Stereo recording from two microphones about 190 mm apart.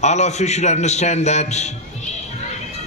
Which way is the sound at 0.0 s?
35° left (ahead or behind).